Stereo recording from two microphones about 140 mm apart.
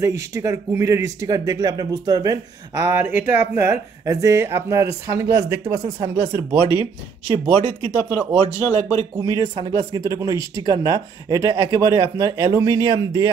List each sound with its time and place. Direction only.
0.0 s speech: 25° right (ahead or behind)
7.5 s speech: 50° right (ahead or behind)
8.8 s speech: 20° right (ahead or behind)